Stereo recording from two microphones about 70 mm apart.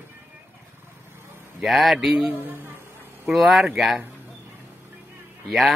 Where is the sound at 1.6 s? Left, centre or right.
Centre.